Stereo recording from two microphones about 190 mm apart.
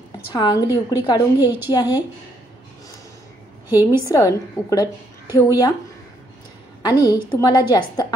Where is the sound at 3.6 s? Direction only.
10° right (ahead or behind).